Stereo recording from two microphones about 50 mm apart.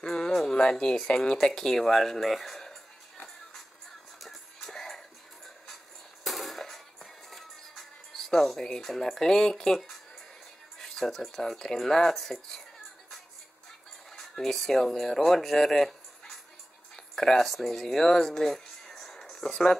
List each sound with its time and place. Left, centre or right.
0.0 s music: centre
0.6 s speech: centre
4.2 s music: centre
6.2 s music: centre
10.8 s speech: centre
14.1 s speech: centre
16.9 s music: centre